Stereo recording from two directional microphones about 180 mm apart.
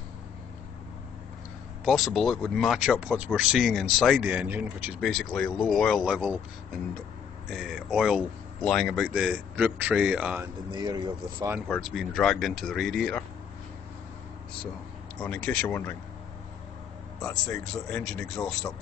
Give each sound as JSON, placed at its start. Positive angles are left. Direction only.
{"t": 1.9, "sound": "speech", "side_deg": 0}
{"t": 7.4, "sound": "speech", "side_deg": 0}
{"t": 10.7, "sound": "speech", "side_deg": -25}
{"t": 11.6, "sound": "speech", "side_deg": 0}
{"t": 15.1, "sound": "speech", "side_deg": 10}
{"t": 17.5, "sound": "speech", "side_deg": 5}